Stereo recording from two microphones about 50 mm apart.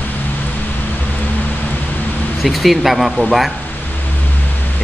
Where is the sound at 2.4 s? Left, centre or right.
Centre.